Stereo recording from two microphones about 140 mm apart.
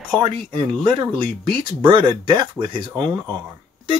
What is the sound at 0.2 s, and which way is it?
Speech, 35° right (ahead or behind).